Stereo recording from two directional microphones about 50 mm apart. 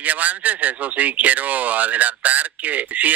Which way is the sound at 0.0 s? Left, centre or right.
Right.